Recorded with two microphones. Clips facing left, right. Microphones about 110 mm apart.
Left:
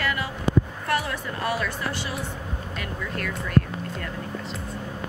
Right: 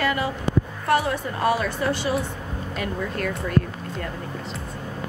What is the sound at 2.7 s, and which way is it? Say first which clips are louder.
Speech: right 5 dB; 30° right (ahead or behind).